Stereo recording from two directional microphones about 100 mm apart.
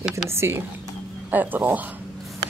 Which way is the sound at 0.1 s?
25° right (ahead or behind).